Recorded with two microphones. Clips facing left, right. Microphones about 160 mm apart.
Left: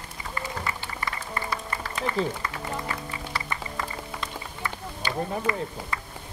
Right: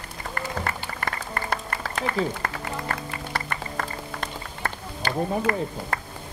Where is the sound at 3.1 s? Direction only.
55° right (ahead or behind).